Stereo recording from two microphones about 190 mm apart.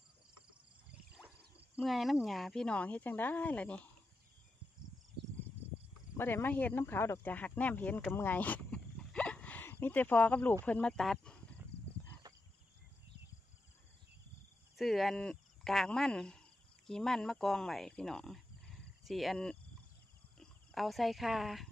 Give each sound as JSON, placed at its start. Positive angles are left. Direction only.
{"t": 0.9, "sound": "a sound", "side_deg": -5}
{"t": 1.8, "sound": "speech", "side_deg": 0}
{"t": 6.1, "sound": "speech", "side_deg": 10}
{"t": 11.7, "sound": "horse", "side_deg": 60}
{"t": 14.8, "sound": "speech", "side_deg": 0}